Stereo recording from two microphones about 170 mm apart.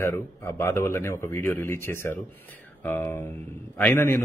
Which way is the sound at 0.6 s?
15° left (ahead or behind).